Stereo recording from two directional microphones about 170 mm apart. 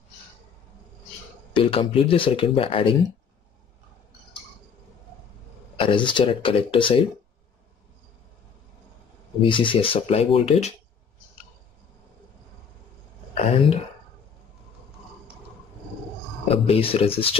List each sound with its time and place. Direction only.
1.5 s speech: 30° left (ahead or behind)
5.8 s speech: 30° left (ahead or behind)
9.4 s speech: 30° left (ahead or behind)
13.3 s speech: 35° left (ahead or behind)
16.4 s speech: 35° left (ahead or behind)